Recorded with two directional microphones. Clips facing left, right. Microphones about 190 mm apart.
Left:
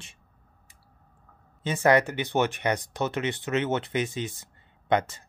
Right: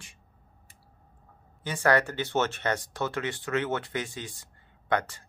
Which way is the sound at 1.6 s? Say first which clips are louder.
Left 3 dB; 20° left (ahead or behind).